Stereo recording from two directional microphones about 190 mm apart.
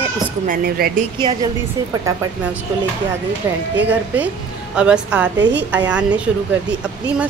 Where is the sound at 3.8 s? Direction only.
10° right (ahead or behind).